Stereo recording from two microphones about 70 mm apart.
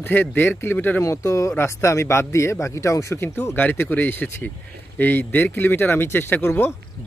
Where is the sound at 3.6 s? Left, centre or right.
Left.